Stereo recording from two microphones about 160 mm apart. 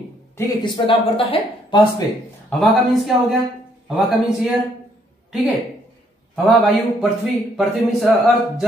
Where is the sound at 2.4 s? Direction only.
5° left (ahead or behind).